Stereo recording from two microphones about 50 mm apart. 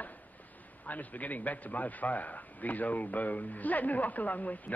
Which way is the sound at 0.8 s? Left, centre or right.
Left.